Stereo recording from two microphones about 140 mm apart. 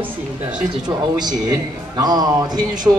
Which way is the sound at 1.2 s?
30° right (ahead or behind).